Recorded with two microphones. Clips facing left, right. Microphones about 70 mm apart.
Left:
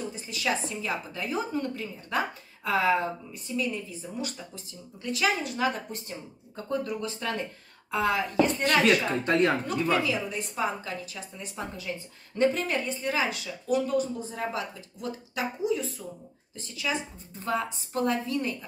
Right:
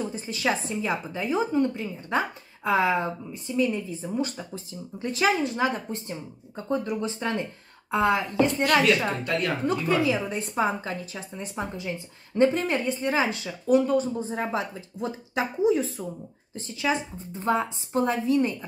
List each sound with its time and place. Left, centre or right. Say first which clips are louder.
0.1 s a woman's voice: right 3 dB; right
9.2 s a woman's voice: left 4 dB; left
9.7 s a woman's voice: right 3 dB; right
15.6 s a woman's voice: right 8 dB; right